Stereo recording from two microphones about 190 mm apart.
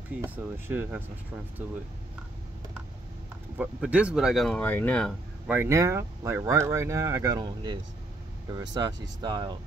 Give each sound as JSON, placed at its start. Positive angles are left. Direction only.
{"t": 0.2, "sound": "speech", "side_deg": -10}
{"t": 3.5, "sound": "speech", "side_deg": -5}
{"t": 5.5, "sound": "speech", "side_deg": -10}